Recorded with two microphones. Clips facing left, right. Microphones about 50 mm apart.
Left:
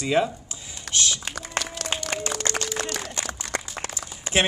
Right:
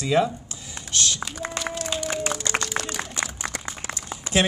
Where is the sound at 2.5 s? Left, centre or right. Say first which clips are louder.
Even; left.